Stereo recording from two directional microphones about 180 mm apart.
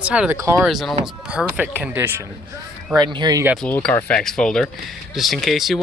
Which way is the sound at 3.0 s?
20° right (ahead or behind).